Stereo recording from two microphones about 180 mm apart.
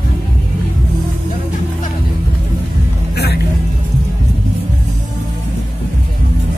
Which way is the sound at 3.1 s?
65° left (ahead or behind).